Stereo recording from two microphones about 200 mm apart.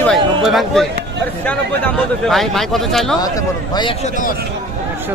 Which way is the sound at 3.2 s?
20° left (ahead or behind).